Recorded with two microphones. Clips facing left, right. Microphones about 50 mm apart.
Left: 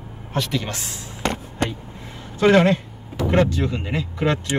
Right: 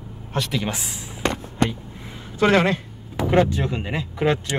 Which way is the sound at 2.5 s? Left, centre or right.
Right.